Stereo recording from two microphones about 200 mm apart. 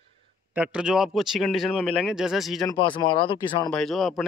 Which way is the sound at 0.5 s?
5° right (ahead or behind).